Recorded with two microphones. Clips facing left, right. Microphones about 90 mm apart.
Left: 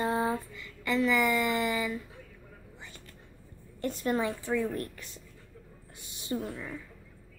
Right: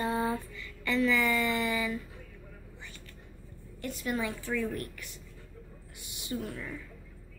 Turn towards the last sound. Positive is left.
turn(degrees=30)  # may be behind; listen again after turning